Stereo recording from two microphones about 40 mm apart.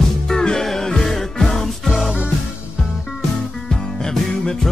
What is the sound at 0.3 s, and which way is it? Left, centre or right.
Music, centre.